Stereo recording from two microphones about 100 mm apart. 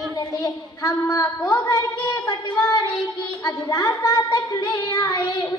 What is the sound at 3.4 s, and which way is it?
Child singing, 35° left (ahead or behind).